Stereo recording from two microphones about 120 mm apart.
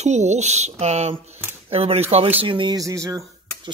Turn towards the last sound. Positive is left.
turn(degrees=-25)  # may be behind; listen again after turning